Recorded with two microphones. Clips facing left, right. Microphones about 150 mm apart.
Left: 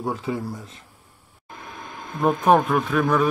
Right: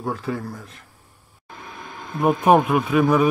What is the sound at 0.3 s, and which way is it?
Speech, 15° left (ahead or behind).